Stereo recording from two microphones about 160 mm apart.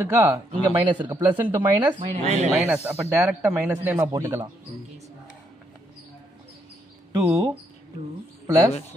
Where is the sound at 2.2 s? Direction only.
45° right (ahead or behind).